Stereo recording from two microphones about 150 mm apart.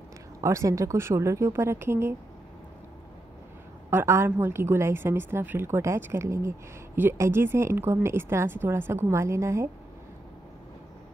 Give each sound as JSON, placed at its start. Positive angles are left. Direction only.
{"t": 0.4, "sound": "speech", "side_deg": -20}
{"t": 3.9, "sound": "a woman's voice", "side_deg": -15}